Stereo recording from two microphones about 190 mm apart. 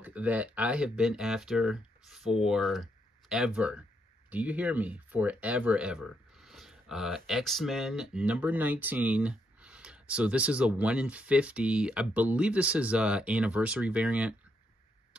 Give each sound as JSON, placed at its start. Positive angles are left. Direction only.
{"t": 0.0, "sound": "speech", "side_deg": -10}